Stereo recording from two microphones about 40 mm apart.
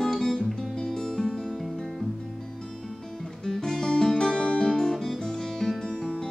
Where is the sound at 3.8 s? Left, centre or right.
Centre.